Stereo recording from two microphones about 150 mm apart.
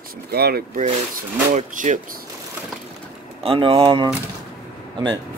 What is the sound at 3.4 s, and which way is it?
Speech, 35° right (ahead or behind).